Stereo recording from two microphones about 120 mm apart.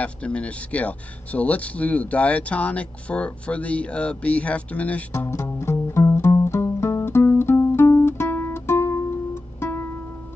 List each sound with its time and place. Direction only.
0.0 s speech: 10° left (ahead or behind)
5.1 s music: 20° left (ahead or behind)